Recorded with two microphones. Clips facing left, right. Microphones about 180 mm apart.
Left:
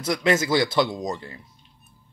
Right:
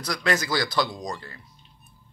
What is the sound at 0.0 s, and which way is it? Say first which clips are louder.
Speech: left 4 dB; 25° left (ahead or behind).